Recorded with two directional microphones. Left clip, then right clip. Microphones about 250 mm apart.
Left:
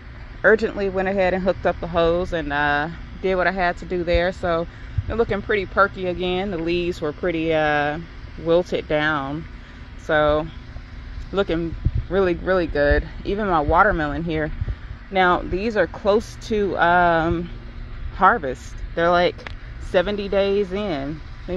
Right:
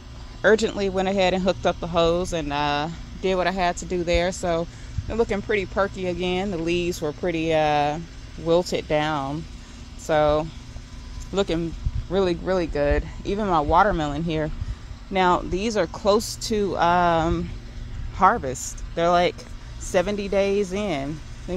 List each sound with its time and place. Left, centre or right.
0.4 s a woman's voice: right; by 21.5 s centre